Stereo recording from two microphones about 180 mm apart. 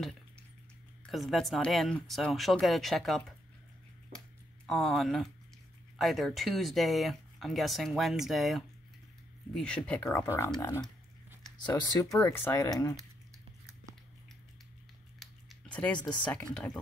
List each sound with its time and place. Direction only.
1.0 s speech: centre (ahead or behind)
4.6 s speech: centre (ahead or behind)
10.0 s speech: 15° left (ahead or behind)
11.7 s speech: 20° left (ahead or behind)
15.1 s a sound: 5° left (ahead or behind)